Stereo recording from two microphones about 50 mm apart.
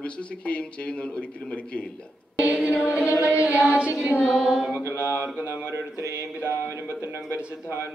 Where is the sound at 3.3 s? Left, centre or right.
Right.